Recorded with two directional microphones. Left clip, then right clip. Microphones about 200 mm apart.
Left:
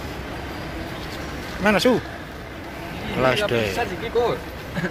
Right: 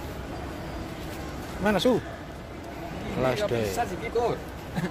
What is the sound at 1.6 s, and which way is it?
Speech, 5° right (ahead or behind).